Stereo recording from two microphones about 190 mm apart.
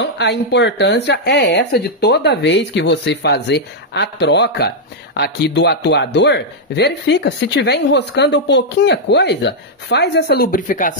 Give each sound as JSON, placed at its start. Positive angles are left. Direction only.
{"t": 0.0, "sound": "speech", "side_deg": 65}